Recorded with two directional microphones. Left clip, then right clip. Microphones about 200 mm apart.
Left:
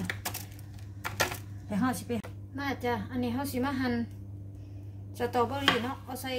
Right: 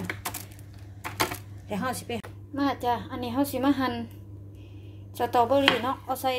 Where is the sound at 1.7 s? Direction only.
35° right (ahead or behind).